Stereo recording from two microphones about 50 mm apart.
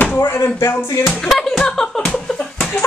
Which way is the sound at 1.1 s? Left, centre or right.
Centre.